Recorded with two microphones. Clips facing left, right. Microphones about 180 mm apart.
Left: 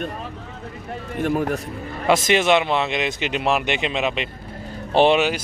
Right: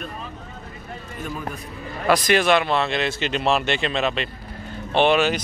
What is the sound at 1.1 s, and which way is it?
Speech, 70° left (ahead or behind).